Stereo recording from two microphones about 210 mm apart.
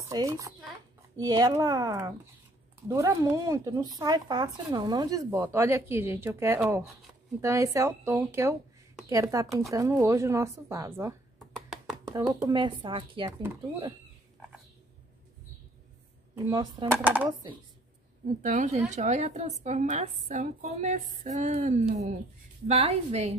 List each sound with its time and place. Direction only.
0.1 s speech: 15° right (ahead or behind)
11.3 s a sound: centre (ahead or behind)
12.1 s speech: 10° right (ahead or behind)
12.5 s speech: 20° right (ahead or behind)
16.4 s speech: 20° right (ahead or behind)
17.0 s speech: 10° right (ahead or behind)
18.4 s a woman's voice: 35° right (ahead or behind)